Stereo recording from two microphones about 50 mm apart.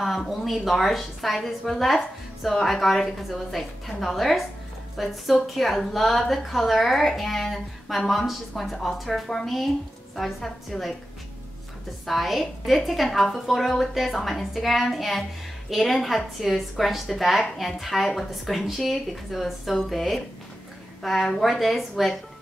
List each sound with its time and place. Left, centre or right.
0.0 s a woman's voice: centre
12.1 s a woman's voice: centre